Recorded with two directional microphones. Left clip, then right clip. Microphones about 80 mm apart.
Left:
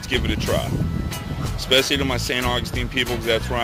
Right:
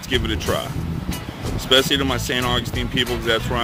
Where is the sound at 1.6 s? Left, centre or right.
Right.